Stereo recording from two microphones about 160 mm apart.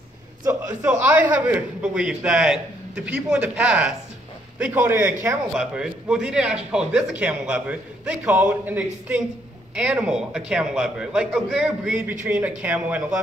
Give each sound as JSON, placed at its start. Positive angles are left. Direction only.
{"t": 0.4, "sound": "a man's voice", "side_deg": -20}